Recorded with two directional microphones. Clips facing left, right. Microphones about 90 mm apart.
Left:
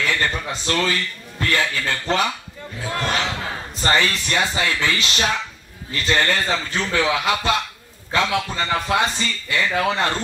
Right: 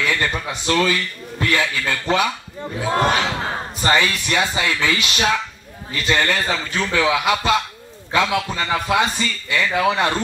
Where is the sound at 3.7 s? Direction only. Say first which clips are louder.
Right 1 dB; 20° right (ahead or behind).